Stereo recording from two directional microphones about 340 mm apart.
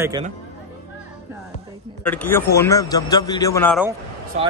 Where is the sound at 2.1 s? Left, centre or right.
Centre.